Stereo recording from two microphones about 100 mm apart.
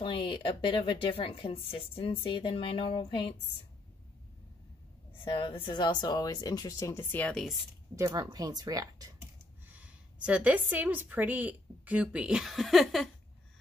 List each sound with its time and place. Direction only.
0.0 s speech: 55° left (ahead or behind)
5.2 s speech: 60° left (ahead or behind); by 6.9 s 40° left (ahead or behind)
6.9 s speech: 20° left (ahead or behind)
7.9 s speech: 35° right (ahead or behind)
9.7 s a woman's voice: 15° right (ahead or behind)